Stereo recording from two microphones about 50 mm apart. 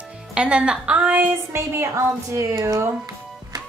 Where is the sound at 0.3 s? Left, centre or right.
Right.